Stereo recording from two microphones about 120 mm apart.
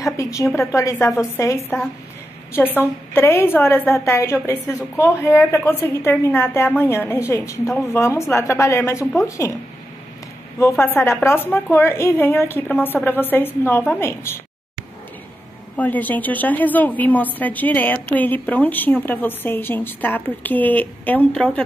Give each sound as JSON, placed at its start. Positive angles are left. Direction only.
{"t": 0.0, "sound": "a woman's voice", "side_deg": 25}
{"t": 10.6, "sound": "a woman's voice", "side_deg": 20}
{"t": 15.7, "sound": "a woman's voice", "side_deg": 15}